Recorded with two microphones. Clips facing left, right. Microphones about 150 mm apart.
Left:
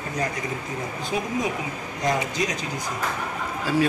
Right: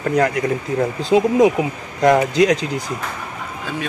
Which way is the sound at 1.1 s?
90° right.